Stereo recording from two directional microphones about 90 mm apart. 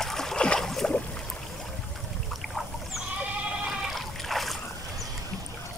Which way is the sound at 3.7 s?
Centre (ahead or behind).